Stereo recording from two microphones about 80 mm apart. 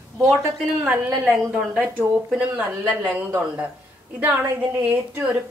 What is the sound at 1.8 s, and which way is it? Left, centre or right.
A woman's voice, centre.